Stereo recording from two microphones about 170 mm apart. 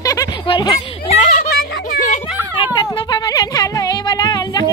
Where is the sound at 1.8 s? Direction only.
50° left (ahead or behind).